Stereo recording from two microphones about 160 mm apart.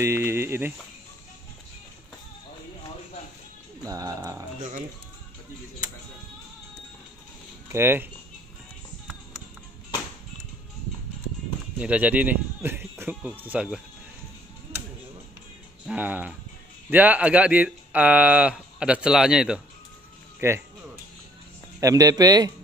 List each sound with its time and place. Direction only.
0.0 s speech: 15° right (ahead or behind)
3.8 s speech: 20° right (ahead or behind)
7.7 s speech: 15° right (ahead or behind)
11.8 s speech: 10° right (ahead or behind)
15.9 s speech: 10° right (ahead or behind)
20.3 s speech: 15° right (ahead or behind)
21.7 s speech: 20° right (ahead or behind)